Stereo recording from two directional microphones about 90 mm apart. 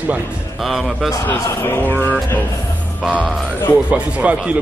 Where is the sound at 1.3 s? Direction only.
20° left (ahead or behind).